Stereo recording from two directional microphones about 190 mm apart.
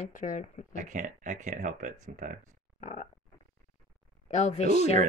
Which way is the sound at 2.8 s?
40° left (ahead or behind).